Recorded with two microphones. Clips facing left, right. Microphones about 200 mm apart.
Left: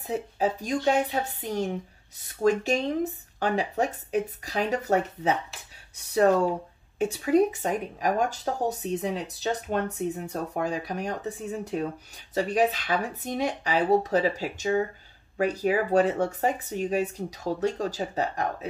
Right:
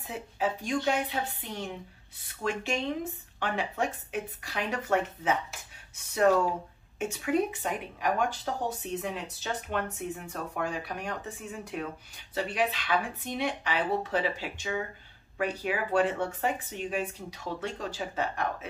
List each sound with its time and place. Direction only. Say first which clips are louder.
0.0 s speech: left 5 dB; 40° left (ahead or behind)
7.0 s speech: left 6 dB; 35° left (ahead or behind)